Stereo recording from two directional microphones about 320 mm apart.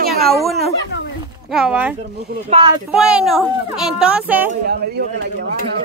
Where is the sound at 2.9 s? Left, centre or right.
Centre.